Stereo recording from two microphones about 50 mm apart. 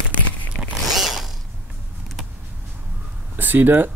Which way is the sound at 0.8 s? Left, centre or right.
Centre.